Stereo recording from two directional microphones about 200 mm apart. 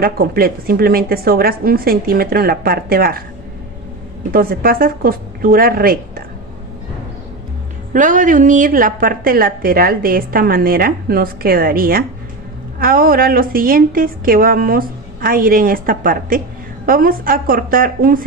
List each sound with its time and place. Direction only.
0.0 s a woman's voice: 50° right (ahead or behind)
4.3 s a woman's voice: 45° right (ahead or behind)
7.9 s a woman's voice: 40° right (ahead or behind)